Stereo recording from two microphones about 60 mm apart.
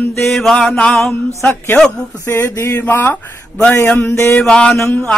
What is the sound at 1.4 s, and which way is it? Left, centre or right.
Speech, left.